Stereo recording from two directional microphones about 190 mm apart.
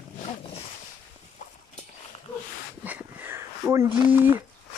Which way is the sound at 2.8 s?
10° right (ahead or behind).